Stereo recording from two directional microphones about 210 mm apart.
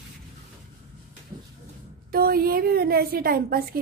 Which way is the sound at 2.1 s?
45° right (ahead or behind).